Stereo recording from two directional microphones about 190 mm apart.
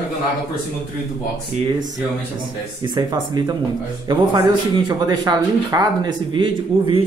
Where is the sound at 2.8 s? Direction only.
20° right (ahead or behind).